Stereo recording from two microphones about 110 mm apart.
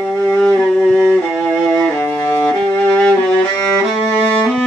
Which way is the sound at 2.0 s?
15° left (ahead or behind).